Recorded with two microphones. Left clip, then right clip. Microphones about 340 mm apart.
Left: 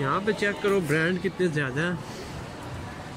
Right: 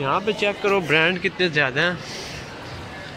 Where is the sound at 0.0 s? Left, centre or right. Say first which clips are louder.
Right 4 dB; centre.